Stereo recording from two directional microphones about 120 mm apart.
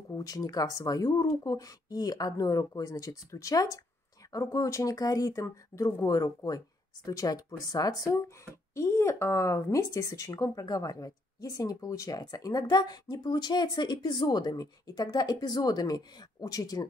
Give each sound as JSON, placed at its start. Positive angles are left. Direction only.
{"t": 0.1, "sound": "speech", "side_deg": 30}